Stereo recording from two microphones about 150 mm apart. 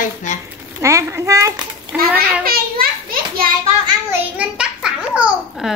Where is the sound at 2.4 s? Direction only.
80° right.